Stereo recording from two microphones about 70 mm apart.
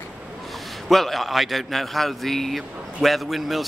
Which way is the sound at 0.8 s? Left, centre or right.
Centre.